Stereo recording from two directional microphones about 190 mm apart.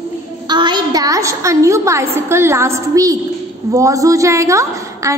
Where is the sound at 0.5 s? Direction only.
25° right (ahead or behind).